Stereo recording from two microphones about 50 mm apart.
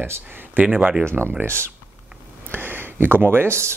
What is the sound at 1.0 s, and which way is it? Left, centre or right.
Speech, right.